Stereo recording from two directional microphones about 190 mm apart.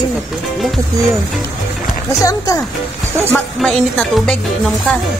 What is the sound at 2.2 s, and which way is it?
Speech, 15° left (ahead or behind).